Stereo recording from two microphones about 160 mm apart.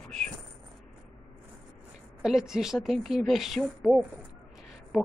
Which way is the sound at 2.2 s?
5° right (ahead or behind).